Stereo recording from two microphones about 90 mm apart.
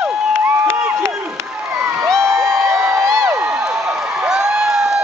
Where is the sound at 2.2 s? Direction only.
30° right (ahead or behind).